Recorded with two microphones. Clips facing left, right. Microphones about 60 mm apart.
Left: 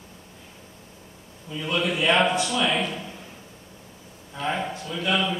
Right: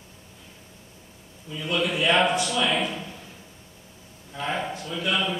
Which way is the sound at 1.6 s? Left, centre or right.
Centre.